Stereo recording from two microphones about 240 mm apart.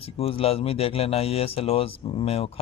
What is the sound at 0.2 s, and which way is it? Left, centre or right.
Speech, left.